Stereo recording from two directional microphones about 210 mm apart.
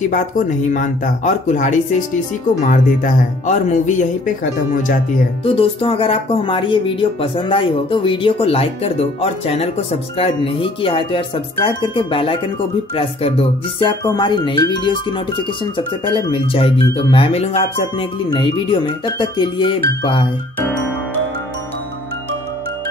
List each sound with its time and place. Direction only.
0.7 s speech: 35° left (ahead or behind)
5.4 s speech: 25° left (ahead or behind)